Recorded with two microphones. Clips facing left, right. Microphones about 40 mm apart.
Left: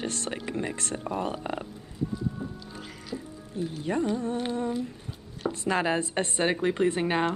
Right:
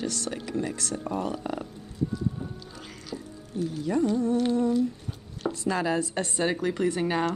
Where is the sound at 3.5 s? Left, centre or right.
Left.